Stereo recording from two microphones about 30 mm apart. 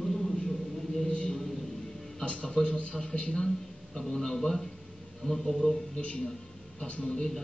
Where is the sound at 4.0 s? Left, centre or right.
Centre.